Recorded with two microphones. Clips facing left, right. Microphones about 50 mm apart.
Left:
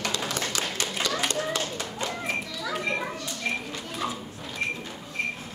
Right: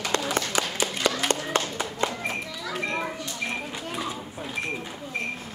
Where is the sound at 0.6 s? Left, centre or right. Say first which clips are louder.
Right 4 dB; right.